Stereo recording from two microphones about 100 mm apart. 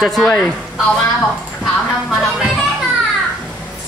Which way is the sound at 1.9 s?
5° right (ahead or behind).